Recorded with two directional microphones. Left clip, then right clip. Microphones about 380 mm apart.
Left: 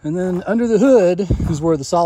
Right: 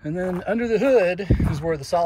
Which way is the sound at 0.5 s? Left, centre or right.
Left.